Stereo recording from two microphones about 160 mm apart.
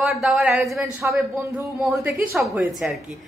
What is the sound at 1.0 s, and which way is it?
A woman's voice, 15° right (ahead or behind).